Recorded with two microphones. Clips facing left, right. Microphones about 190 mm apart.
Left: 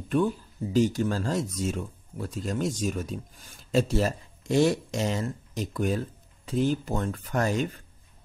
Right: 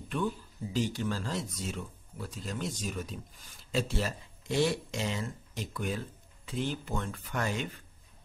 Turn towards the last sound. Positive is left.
turn(degrees=40)  # may be behind; listen again after turning